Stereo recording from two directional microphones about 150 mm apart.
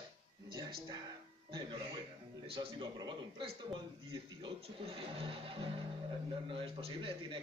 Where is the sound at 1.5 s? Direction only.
30° right (ahead or behind).